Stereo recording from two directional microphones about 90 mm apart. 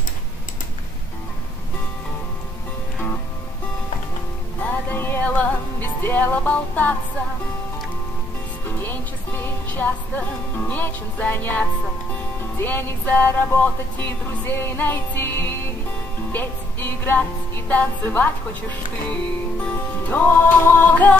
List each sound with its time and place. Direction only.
4.6 s music: 20° left (ahead or behind)
8.6 s music: 25° left (ahead or behind)
20.1 s music: 20° left (ahead or behind)